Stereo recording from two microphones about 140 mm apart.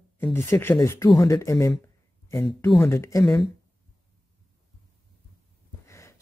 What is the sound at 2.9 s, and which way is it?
Speech, 20° left (ahead or behind).